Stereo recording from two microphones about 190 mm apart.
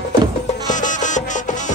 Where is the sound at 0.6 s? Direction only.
40° left (ahead or behind).